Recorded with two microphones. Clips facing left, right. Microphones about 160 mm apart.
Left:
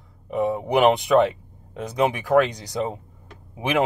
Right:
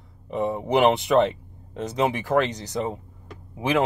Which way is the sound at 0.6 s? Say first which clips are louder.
Even; 15° left (ahead or behind).